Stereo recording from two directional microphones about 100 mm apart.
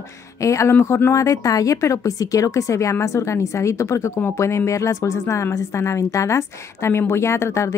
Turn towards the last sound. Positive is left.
turn(degrees=30)  # may be behind; listen again after turning